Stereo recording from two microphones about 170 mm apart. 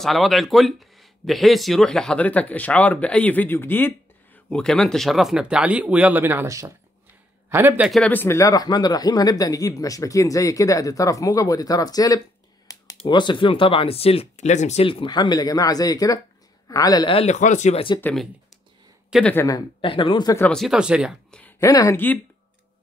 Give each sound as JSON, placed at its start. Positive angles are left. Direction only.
{"t": 0.0, "sound": "a man's voice", "side_deg": 0}
{"t": 7.9, "sound": "speech", "side_deg": 10}
{"t": 19.4, "sound": "speech", "side_deg": 25}
{"t": 20.3, "sound": "speech", "side_deg": 5}
{"t": 21.4, "sound": "speech", "side_deg": 15}